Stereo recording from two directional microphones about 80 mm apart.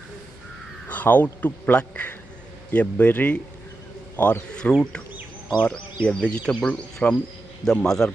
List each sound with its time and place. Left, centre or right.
0.8 s a man's voice: centre